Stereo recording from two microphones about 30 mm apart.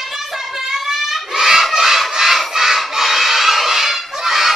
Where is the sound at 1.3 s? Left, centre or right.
Right.